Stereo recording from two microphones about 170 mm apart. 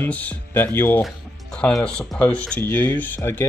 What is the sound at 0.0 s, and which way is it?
Speech, 10° left (ahead or behind).